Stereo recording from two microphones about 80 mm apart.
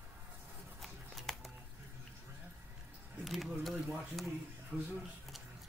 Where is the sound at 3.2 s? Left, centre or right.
Centre.